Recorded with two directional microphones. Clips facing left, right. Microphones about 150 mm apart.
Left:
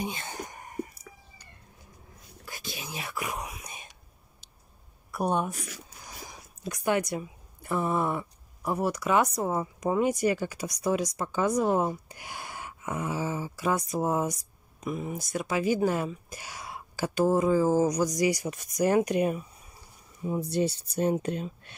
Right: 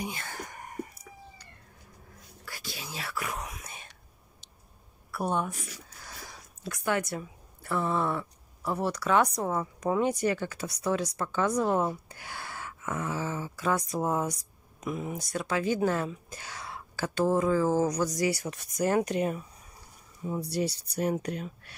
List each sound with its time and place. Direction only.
0.0 s whispering: 20° left (ahead or behind)
2.4 s whispering: 20° left (ahead or behind)
5.1 s a woman's voice: 15° left (ahead or behind)